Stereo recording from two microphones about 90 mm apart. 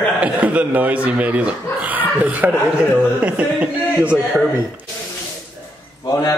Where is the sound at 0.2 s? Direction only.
15° right (ahead or behind).